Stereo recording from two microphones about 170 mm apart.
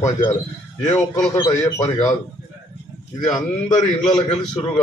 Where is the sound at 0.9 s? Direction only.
20° left (ahead or behind).